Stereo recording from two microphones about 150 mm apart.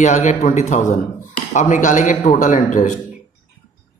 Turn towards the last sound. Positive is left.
turn(degrees=55)  # may be behind; listen again after turning